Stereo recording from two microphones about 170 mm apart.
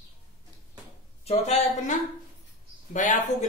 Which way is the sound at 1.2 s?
40° left (ahead or behind).